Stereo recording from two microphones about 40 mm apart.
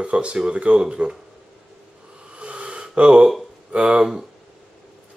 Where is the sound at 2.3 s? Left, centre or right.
Right.